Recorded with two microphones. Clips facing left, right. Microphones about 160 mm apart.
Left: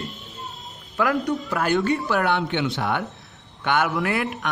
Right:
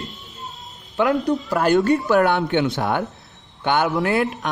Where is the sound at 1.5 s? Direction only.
40° right (ahead or behind).